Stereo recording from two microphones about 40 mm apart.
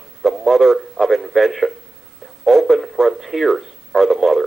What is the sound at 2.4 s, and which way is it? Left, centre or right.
Radio, centre.